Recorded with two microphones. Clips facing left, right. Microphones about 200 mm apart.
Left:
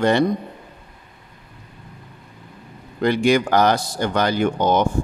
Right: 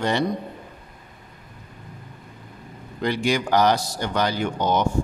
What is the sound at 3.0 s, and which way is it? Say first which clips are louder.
A man's voice: left 6 dB; 55° left (ahead or behind).